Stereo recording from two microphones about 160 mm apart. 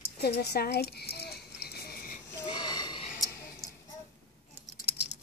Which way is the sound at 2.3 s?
25° left (ahead or behind).